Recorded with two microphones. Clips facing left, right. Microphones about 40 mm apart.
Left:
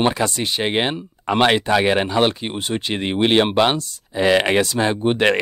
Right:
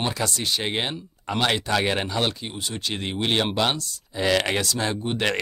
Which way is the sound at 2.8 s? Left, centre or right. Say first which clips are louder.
Left 7 dB; left.